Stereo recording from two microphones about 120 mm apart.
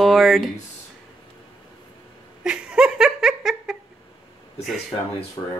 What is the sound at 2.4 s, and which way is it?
Laughter, 5° right (ahead or behind).